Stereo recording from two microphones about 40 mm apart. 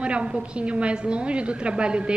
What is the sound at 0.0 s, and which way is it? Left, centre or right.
A woman's voice, right.